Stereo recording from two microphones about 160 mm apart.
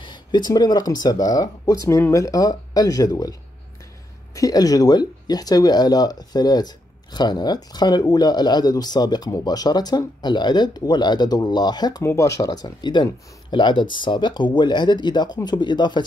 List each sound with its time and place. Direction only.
0.0 s speech: 30° left (ahead or behind)
4.4 s speech: 20° left (ahead or behind)